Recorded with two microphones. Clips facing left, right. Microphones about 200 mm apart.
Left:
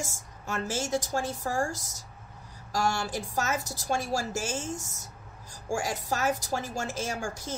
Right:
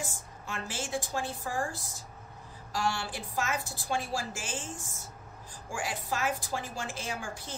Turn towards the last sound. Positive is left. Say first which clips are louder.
# left 4 dB
turn(degrees=45)  # may be behind; listen again after turning